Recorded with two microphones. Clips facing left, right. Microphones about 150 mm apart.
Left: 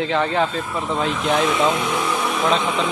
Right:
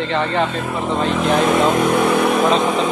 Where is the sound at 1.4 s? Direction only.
50° right (ahead or behind).